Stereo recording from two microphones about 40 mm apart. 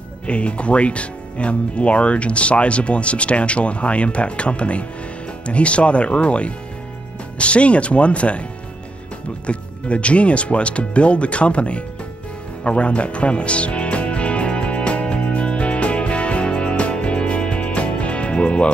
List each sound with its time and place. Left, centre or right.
0.3 s speech: left
9.5 s speech: left
12.6 s music: left